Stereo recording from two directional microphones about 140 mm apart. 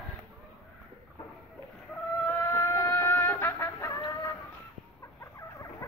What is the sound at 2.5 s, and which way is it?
Chicken, 25° left (ahead or behind).